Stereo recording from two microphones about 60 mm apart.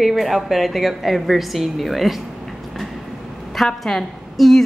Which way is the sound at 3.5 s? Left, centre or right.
Centre.